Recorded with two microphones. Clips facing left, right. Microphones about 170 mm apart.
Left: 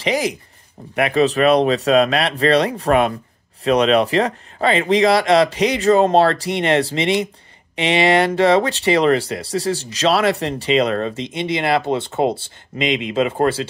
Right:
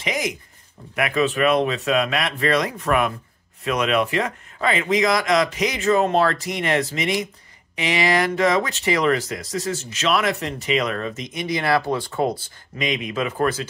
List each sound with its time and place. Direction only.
0.0 s speech: 30° left (ahead or behind)